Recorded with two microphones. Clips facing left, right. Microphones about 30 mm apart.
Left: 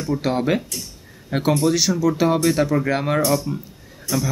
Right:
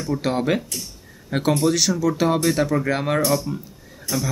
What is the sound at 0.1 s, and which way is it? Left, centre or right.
Speech, centre.